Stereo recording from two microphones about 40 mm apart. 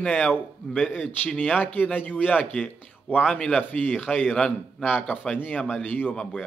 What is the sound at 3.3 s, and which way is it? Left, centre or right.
A man's voice, left.